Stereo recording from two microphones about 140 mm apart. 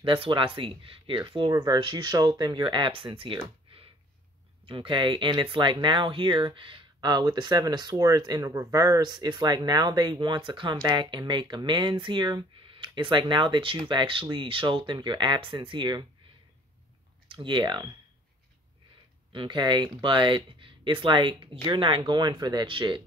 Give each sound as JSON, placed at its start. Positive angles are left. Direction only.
{"t": 0.0, "sound": "speech", "side_deg": -40}
{"t": 17.4, "sound": "speech", "side_deg": -35}
{"t": 19.3, "sound": "speech", "side_deg": -35}